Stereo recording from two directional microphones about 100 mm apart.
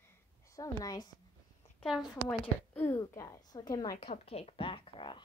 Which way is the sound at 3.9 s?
85° left.